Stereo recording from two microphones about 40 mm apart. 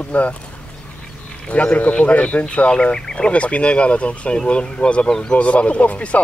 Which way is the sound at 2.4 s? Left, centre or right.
Left.